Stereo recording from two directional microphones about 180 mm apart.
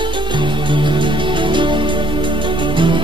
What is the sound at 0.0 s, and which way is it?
Music, 25° right (ahead or behind).